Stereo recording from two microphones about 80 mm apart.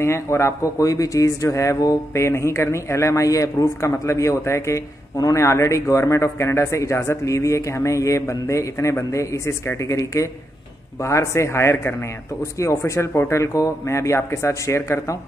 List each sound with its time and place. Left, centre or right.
0.0 s speech: left